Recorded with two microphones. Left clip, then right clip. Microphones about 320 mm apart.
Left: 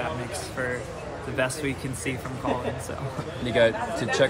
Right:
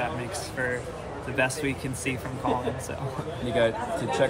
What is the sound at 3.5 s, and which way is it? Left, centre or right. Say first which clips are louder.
Speech: left 3 dB; left.